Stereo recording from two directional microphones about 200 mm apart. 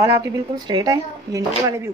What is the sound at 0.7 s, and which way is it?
A woman's voice, 20° right (ahead or behind).